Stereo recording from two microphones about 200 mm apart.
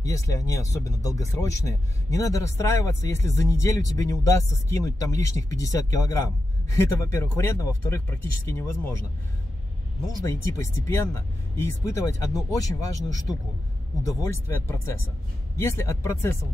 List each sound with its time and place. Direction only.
0.0 s speech: 15° left (ahead or behind)
10.2 s speech: 15° left (ahead or behind)